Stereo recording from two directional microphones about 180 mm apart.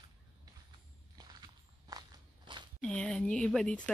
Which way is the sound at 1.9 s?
20° right (ahead or behind).